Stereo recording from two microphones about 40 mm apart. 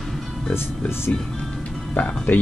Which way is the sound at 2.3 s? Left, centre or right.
Left.